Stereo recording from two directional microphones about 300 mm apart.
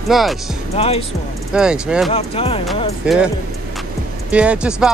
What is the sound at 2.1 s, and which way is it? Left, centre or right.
Speech, centre.